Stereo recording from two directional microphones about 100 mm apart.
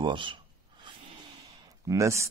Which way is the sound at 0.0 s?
55° right (ahead or behind).